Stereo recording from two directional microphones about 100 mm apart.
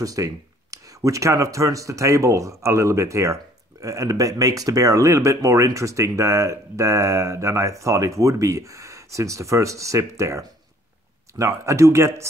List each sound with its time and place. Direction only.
0.0 s speech: 35° right (ahead or behind)